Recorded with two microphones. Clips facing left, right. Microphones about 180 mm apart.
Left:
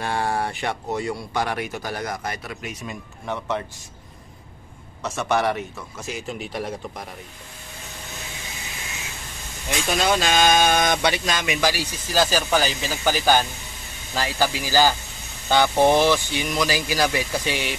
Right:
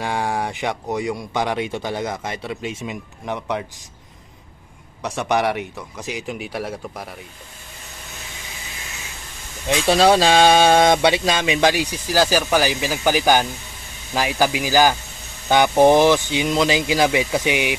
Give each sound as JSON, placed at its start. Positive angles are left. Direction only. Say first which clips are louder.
{"t": 0.0, "sound": "speech", "louder": "right 1 dB", "side_deg": -15}
{"t": 3.3, "sound": "speech", "louder": "right 2 dB", "side_deg": -15}
{"t": 5.0, "sound": "speech", "louder": "right 2 dB", "side_deg": -15}
{"t": 9.8, "sound": "speech", "louder": "right 7 dB", "side_deg": -35}